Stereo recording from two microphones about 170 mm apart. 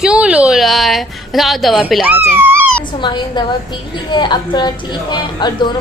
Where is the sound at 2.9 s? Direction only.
25° left (ahead or behind).